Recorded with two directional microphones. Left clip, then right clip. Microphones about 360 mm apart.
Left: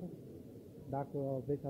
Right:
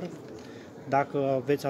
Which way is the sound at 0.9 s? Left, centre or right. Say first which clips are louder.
Right 14 dB; right.